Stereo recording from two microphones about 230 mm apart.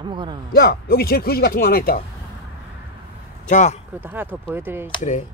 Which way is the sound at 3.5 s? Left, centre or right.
Left.